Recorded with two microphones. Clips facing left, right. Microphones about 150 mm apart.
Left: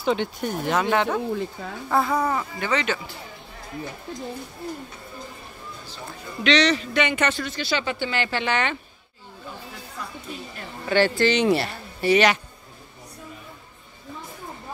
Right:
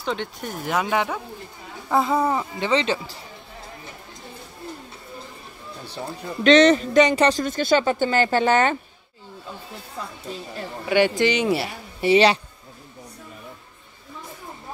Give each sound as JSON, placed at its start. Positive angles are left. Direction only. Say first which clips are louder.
{"t": 0.0, "sound": "speech", "louder": "left 4 dB", "side_deg": 5}
{"t": 1.9, "sound": "speech", "louder": "right 2 dB", "side_deg": -20}
{"t": 6.4, "sound": "speech", "louder": "right 6 dB", "side_deg": -45}
{"t": 10.9, "sound": "speech", "louder": "right 1 dB", "side_deg": -15}
{"t": 12.0, "sound": "speech", "louder": "right 2 dB", "side_deg": -30}